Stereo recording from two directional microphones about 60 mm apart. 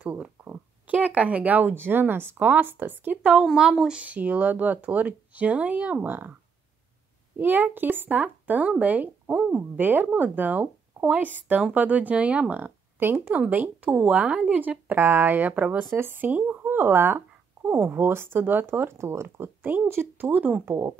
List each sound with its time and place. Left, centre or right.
0.0 s speech: right
3.5 s speech: centre
4.0 s speech: right
7.3 s speech: right
12.5 s speech: right
15.9 s speech: right
20.2 s speech: right